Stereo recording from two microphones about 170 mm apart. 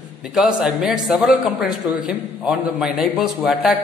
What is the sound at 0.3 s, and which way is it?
A man's voice, 5° right (ahead or behind).